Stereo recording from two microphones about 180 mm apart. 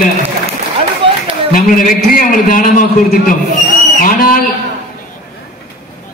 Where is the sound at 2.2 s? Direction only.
50° left (ahead or behind).